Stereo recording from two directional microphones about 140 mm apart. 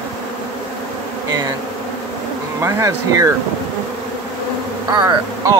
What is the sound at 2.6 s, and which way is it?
Speech, 25° right (ahead or behind).